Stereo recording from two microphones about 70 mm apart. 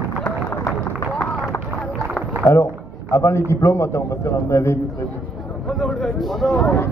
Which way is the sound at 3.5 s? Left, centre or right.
Left.